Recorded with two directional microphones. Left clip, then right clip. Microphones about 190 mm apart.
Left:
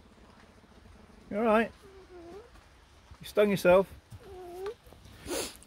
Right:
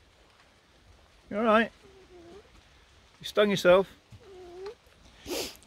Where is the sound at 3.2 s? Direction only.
20° right (ahead or behind).